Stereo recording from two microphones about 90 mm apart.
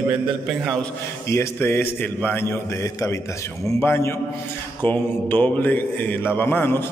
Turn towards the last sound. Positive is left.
turn(degrees=20)  # may be behind; listen again after turning